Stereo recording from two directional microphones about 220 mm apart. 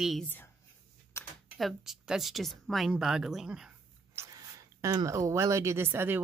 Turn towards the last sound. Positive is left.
turn(degrees=-10)  # may be behind; listen again after turning